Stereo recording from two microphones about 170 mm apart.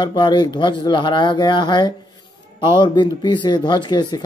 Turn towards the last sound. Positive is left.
turn(degrees=25)  # may be behind; listen again after turning